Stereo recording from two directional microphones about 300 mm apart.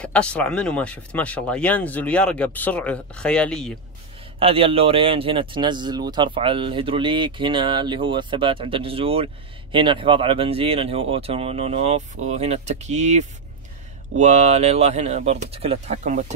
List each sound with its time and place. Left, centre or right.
0.0 s speech: centre
4.4 s speech: centre